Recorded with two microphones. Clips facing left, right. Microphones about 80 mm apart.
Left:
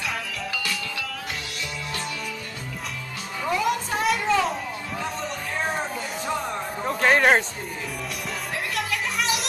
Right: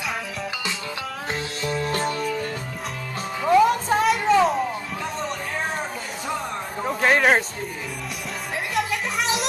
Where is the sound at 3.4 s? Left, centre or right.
Right.